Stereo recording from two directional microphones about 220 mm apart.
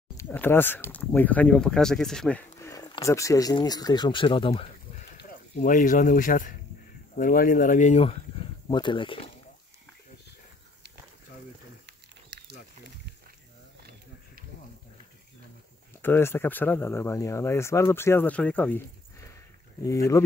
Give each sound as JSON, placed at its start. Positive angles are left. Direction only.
{"t": 0.2, "sound": "speech", "side_deg": 10}
{"t": 11.8, "sound": "a sound", "side_deg": -50}
{"t": 16.0, "sound": "speech", "side_deg": 10}
{"t": 19.8, "sound": "speech", "side_deg": 15}